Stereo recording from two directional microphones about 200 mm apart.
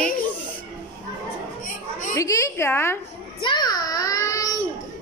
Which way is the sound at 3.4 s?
20° left (ahead or behind).